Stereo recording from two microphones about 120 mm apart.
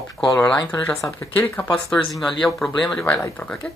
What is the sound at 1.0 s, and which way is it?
Speech, 25° left (ahead or behind).